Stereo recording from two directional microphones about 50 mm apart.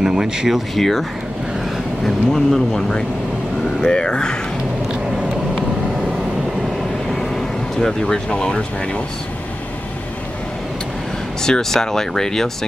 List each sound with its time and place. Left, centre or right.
0.0 s speech: centre
0.7 s speech: centre
2.0 s speech: centre
7.1 s vehicle: centre
8.3 s speech: centre
11.4 s speech: centre